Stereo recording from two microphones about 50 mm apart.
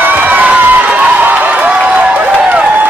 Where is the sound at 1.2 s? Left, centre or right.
Right.